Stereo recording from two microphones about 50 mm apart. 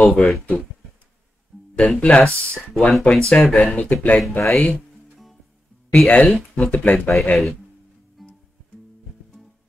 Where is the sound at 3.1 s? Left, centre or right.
Centre.